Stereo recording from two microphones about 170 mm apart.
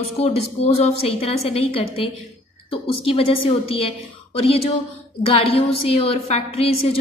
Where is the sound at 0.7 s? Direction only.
35° left (ahead or behind).